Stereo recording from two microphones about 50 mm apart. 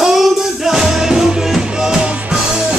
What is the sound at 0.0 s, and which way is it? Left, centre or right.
Music, centre.